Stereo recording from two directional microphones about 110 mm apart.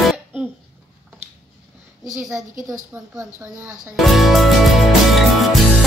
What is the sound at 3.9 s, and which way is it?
Speech, centre (ahead or behind).